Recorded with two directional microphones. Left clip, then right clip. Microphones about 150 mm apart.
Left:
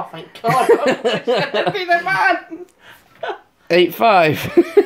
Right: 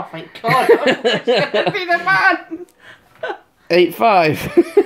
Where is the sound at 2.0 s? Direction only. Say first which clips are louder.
Right 3 dB; 90° right.